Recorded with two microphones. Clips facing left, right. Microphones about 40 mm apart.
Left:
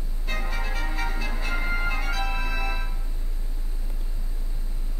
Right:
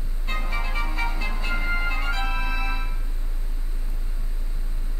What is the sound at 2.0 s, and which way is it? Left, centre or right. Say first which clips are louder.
Music: right 1 dB; right.